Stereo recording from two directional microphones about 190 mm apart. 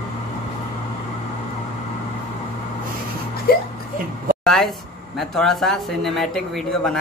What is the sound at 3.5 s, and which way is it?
Music, 55° left (ahead or behind).